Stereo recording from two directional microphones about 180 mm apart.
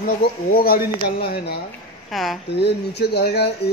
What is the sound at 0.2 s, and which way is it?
Speech, 55° left (ahead or behind).